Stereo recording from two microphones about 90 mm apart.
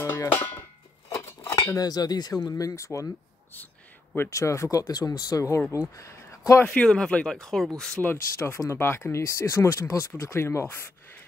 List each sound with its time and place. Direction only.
0.0 s music: 25° left (ahead or behind)
1.0 s a sound: 30° left (ahead or behind)
1.8 s speech: 45° left (ahead or behind)
4.3 s speech: 35° left (ahead or behind)
5.9 s a sound: 35° left (ahead or behind)
6.6 s speech: 10° left (ahead or behind)
8.0 s speech: 25° left (ahead or behind)